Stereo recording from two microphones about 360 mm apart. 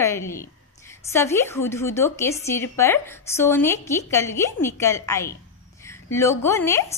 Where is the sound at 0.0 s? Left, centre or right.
Centre.